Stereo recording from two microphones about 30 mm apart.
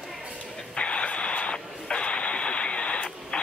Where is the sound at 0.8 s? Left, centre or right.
Left.